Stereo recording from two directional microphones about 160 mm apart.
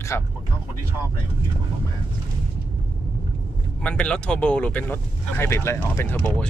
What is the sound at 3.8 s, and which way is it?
Speech, 10° left (ahead or behind).